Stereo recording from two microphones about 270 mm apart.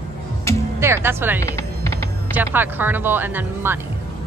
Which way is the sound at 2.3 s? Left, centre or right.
Centre.